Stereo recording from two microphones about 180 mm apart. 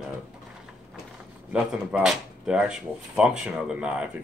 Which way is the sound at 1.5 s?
5° right (ahead or behind).